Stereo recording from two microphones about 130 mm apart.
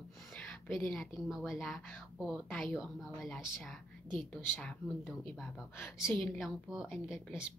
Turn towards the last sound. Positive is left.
turn(degrees=-5)  # may be behind; listen again after turning